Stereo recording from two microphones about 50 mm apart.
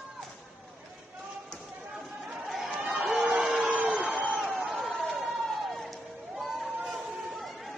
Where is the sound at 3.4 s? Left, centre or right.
Centre.